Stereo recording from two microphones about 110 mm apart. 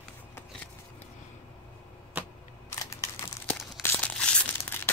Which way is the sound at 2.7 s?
25° left (ahead or behind).